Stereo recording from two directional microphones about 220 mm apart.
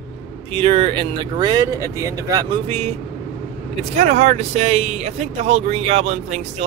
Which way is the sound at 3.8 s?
30° right (ahead or behind).